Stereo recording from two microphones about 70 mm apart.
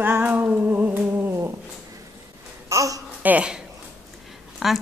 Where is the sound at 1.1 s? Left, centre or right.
Right.